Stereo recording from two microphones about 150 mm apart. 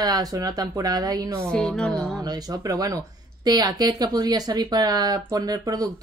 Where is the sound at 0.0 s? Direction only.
25° right (ahead or behind).